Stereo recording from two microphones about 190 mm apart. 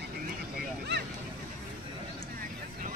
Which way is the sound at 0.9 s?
60° right (ahead or behind).